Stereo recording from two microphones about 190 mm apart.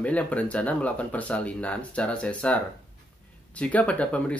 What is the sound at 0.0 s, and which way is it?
Speech, 5° left (ahead or behind).